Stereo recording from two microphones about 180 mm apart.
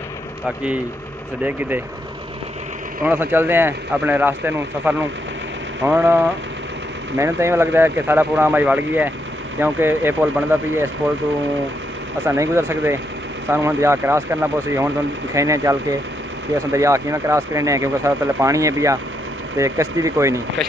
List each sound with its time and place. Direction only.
3.0 s speech: 10° right (ahead or behind)
7.2 s speech: 15° right (ahead or behind)
12.3 s speech: 15° right (ahead or behind)